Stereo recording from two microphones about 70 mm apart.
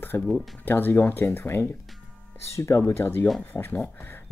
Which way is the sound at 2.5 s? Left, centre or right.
Left.